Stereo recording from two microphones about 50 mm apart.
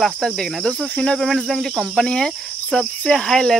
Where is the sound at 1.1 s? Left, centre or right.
Centre.